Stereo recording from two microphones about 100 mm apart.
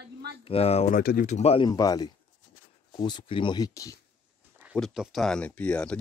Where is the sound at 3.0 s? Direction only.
50° left (ahead or behind).